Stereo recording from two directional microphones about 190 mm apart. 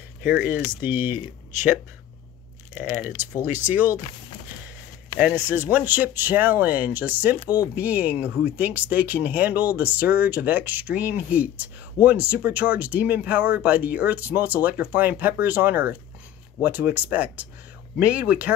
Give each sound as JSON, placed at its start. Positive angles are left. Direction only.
{"t": 0.2, "sound": "speech", "side_deg": -10}
{"t": 2.7, "sound": "speech", "side_deg": -10}
{"t": 5.2, "sound": "speech", "side_deg": -10}